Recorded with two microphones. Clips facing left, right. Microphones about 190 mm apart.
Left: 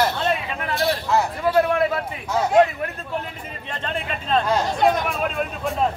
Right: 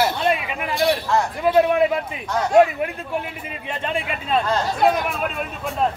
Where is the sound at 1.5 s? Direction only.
15° right (ahead or behind).